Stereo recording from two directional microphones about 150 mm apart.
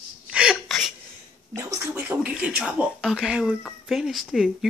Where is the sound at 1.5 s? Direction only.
15° right (ahead or behind).